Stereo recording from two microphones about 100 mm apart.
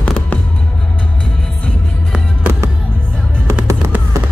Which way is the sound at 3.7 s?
20° right (ahead or behind).